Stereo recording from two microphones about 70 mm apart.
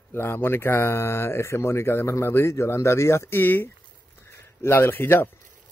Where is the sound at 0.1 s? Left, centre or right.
Left.